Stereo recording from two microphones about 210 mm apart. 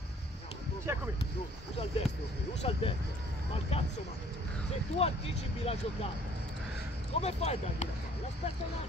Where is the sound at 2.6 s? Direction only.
30° left (ahead or behind).